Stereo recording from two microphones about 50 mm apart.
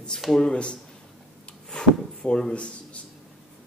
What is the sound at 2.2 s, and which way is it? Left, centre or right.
Speech, centre.